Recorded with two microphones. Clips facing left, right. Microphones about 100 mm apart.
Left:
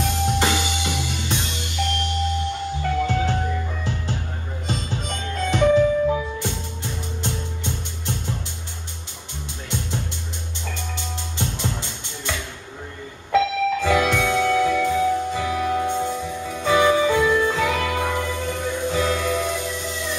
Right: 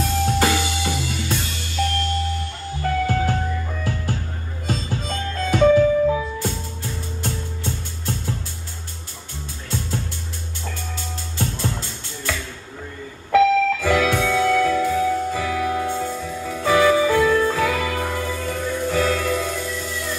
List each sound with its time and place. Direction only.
0.0 s music: 20° left (ahead or behind)
9.7 s music: 20° left (ahead or behind)
13.7 s music: 20° left (ahead or behind)